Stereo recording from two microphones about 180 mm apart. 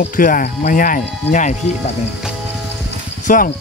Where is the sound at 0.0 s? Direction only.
50° left (ahead or behind).